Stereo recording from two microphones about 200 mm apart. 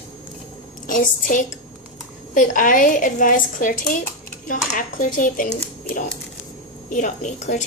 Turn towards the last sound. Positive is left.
turn(degrees=35)  # may be behind; listen again after turning